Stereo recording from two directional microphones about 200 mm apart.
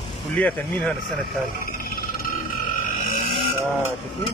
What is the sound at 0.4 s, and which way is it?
Speech, 5° left (ahead or behind).